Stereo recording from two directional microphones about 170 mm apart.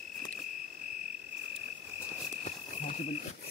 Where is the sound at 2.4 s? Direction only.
45° left (ahead or behind).